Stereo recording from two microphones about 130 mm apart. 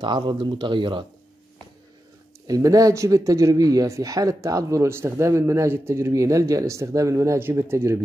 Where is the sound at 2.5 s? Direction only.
25° right (ahead or behind).